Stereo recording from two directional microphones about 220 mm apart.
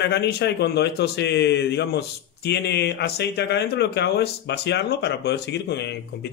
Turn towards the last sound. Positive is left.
turn(degrees=50)  # may be behind; listen again after turning